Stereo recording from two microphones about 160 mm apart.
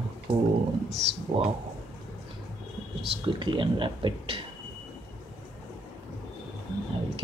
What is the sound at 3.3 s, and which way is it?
Speech, 30° right (ahead or behind).